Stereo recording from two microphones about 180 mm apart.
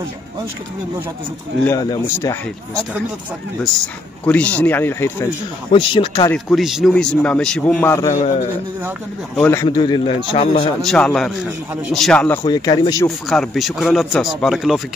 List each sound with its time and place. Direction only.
1.6 s speech: 20° left (ahead or behind)
4.3 s speech: 10° left (ahead or behind)
5.7 s speech: 30° left (ahead or behind)
6.3 s a man's voice: centre (ahead or behind)
8.1 s a man's voice: 40° left (ahead or behind)
9.4 s speech: 15° left (ahead or behind)
9.7 s speech: 25° left (ahead or behind)
10.8 s a man's voice: 5° left (ahead or behind)
12.4 s speech: 20° left (ahead or behind)
13.3 s a man's voice: centre (ahead or behind)